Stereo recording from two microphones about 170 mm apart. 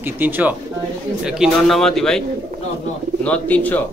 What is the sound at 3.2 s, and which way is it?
Speech, 10° left (ahead or behind).